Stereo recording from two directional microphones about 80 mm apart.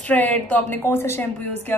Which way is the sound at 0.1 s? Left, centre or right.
Centre.